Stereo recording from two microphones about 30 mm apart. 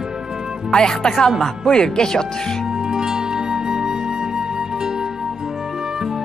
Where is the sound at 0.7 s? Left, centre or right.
Left.